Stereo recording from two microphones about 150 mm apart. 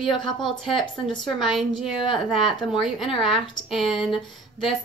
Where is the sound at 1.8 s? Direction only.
Centre (ahead or behind).